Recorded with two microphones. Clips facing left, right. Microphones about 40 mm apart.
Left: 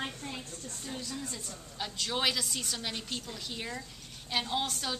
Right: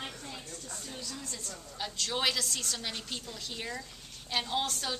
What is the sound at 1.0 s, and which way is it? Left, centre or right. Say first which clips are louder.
Speech: left 2 dB; centre.